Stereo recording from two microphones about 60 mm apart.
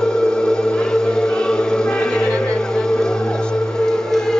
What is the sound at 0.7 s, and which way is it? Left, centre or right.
Music, centre.